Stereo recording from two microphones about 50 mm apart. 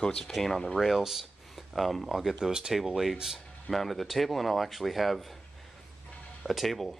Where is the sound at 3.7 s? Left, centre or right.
Centre.